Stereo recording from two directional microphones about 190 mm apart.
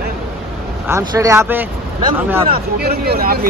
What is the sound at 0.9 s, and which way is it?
Speech, 15° right (ahead or behind).